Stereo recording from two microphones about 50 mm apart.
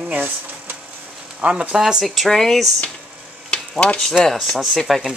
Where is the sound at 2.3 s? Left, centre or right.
Centre.